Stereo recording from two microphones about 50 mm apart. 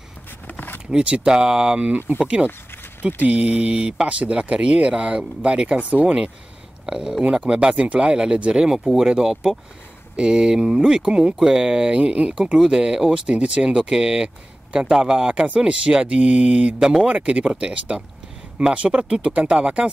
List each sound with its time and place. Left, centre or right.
0.5 s a sound: left
0.8 s speech: centre
1.9 s speech: right
2.1 s speech: centre
8.7 s speech: centre
15.3 s speech: right
16.8 s speech: centre
17.1 s speech: right